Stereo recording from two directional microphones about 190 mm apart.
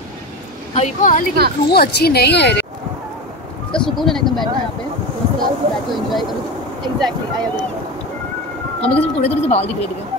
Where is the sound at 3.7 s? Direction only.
Centre (ahead or behind).